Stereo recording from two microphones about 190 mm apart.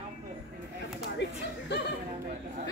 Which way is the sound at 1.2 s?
65° left (ahead or behind).